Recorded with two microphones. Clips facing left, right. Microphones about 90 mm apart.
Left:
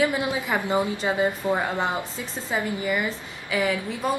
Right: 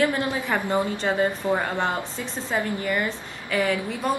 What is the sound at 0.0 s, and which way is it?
A woman's voice, 10° left (ahead or behind).